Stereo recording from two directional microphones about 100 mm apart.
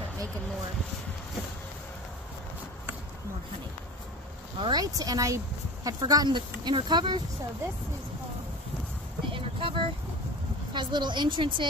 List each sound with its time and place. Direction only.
4.6 s speech: 45° right (ahead or behind)
9.3 s a sound: 60° right (ahead or behind)
10.7 s a woman's voice: 50° right (ahead or behind)